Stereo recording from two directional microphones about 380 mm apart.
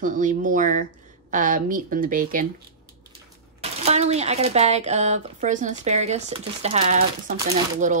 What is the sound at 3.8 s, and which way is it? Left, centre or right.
Speech, centre.